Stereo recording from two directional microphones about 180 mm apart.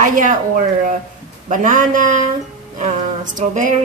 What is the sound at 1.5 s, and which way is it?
Speech, 45° right (ahead or behind).